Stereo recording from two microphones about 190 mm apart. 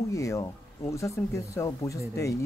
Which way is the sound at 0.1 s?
15° left (ahead or behind).